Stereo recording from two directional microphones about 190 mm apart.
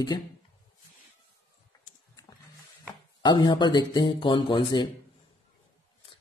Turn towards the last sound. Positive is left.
turn(degrees=25)  # may be behind; listen again after turning